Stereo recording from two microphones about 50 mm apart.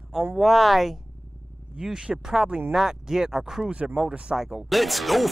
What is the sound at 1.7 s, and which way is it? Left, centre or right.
Speech, centre.